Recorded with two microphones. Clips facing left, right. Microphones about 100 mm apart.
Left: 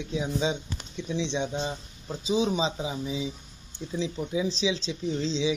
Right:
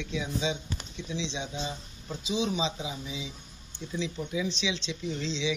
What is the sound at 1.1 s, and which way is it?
Speech, 50° left (ahead or behind).